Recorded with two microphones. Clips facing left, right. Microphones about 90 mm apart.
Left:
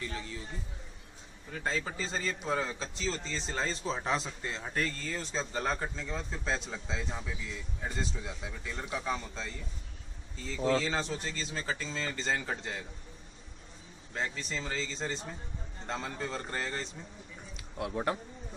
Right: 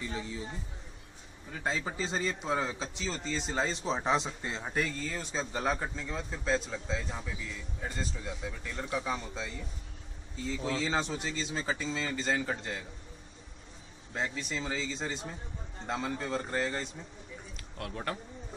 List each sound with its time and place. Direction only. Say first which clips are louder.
0.0 s a man's voice: right 2 dB; 15° right (ahead or behind)
1.5 s a man's voice: even; 15° right (ahead or behind)
4.7 s a man's voice: right 1 dB; 5° right (ahead or behind)
14.1 s a man's voice: right 1 dB; 10° right (ahead or behind)
17.6 s a sound: left 6 dB; 15° left (ahead or behind)